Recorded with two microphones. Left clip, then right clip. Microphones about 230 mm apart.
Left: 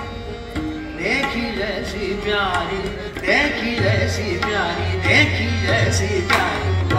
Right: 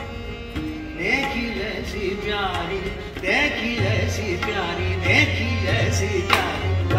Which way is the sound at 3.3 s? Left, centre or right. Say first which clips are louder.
Left 3 dB; left.